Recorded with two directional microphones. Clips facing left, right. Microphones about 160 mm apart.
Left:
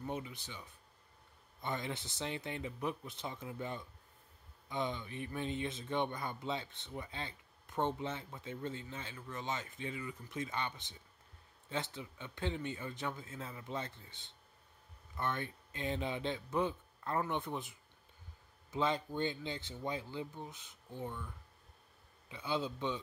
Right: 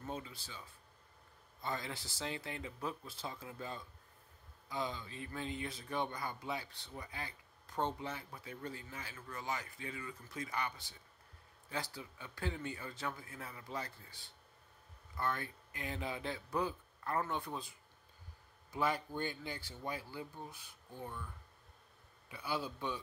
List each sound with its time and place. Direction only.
0.0 s speech: 20° left (ahead or behind)
22.3 s speech: 20° left (ahead or behind)